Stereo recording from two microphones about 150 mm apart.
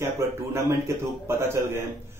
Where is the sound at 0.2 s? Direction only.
15° right (ahead or behind).